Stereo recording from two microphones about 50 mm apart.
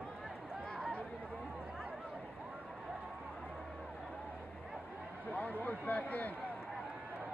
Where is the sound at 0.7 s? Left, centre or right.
Left.